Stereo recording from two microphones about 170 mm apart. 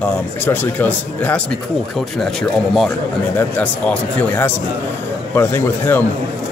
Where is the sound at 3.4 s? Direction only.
10° left (ahead or behind).